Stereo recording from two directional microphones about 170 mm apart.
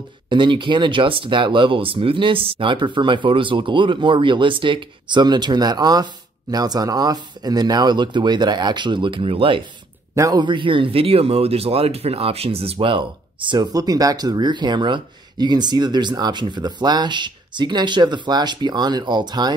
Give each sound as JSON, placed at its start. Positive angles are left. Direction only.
{"t": 0.3, "sound": "speech", "side_deg": -30}